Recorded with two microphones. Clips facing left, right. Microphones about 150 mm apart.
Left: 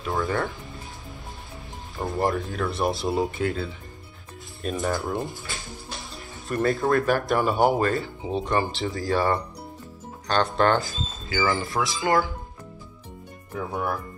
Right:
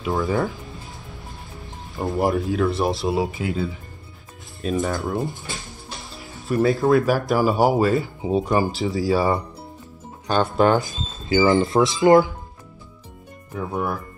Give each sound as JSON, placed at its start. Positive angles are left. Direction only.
{"t": 0.0, "sound": "speech", "side_deg": -5}
{"t": 2.0, "sound": "speech", "side_deg": -5}
{"t": 10.8, "sound": "speech", "side_deg": -20}